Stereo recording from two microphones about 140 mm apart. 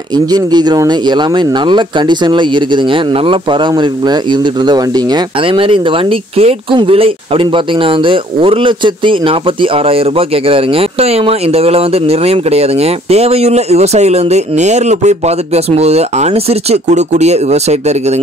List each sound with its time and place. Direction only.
0.1 s speech: 30° right (ahead or behind); by 17.9 s 50° right (ahead or behind)